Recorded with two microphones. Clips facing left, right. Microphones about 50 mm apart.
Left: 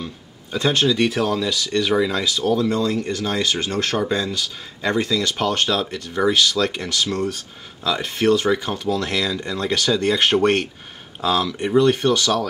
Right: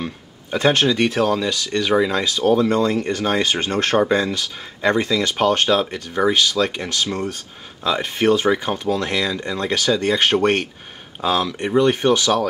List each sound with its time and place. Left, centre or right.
0.5 s speech: right
1.0 s speech: centre; by 3.9 s right
3.9 s speech: right